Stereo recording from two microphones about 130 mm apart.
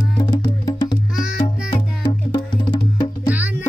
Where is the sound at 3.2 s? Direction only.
10° right (ahead or behind).